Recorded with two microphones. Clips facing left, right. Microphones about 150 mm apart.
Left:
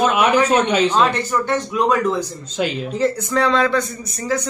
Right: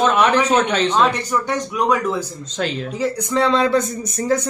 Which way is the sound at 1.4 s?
10° right (ahead or behind).